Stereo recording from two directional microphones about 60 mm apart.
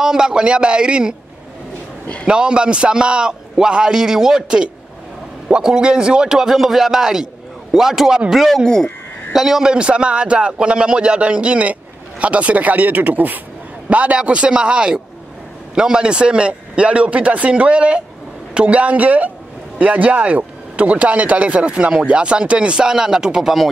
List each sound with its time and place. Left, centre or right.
0.0 s a man's voice: centre
2.2 s a man's voice: centre
8.6 s speech: centre
9.3 s a man's voice: centre